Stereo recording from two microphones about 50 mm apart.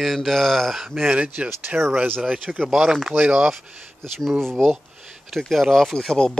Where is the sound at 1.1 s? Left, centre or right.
Right.